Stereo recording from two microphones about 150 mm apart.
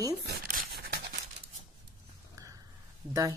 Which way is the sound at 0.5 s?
85° right.